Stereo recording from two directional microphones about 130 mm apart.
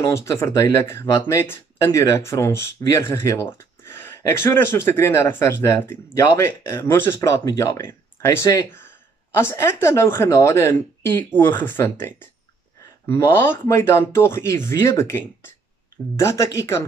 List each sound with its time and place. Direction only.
0.0 s speech: 20° left (ahead or behind)